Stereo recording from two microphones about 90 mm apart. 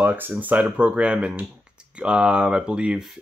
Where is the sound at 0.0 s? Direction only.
20° right (ahead or behind).